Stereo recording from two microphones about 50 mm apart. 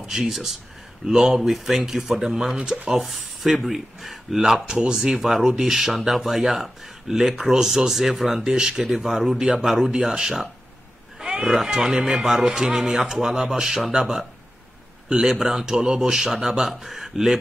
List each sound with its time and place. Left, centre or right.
0.1 s speech: centre
2.9 s speech: centre
11.1 s a sound: centre
11.5 s speech: centre